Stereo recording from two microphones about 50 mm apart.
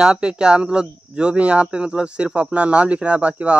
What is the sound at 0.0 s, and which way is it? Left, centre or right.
Speech, centre.